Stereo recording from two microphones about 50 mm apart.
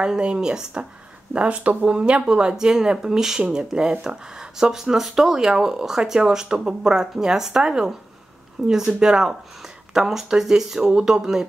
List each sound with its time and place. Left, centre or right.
0.0 s speech: centre